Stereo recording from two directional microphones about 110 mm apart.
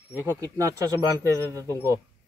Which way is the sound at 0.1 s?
20° right (ahead or behind).